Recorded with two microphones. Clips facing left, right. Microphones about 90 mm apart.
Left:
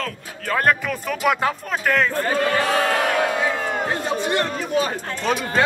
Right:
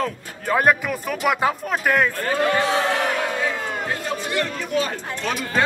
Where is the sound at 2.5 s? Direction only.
20° right (ahead or behind).